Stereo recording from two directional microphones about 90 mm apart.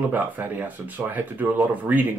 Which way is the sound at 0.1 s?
20° right (ahead or behind).